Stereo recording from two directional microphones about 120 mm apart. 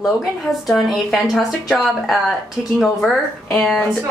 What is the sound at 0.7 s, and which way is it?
Speech, centre (ahead or behind).